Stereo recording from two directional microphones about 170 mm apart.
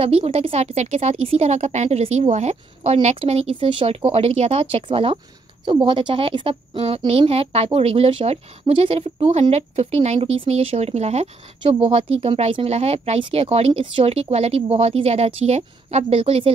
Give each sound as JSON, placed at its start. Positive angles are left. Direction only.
{"t": 0.0, "sound": "a woman's voice", "side_deg": -35}